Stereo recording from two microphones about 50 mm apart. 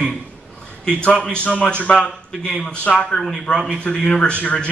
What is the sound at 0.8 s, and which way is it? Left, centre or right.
Speech, centre.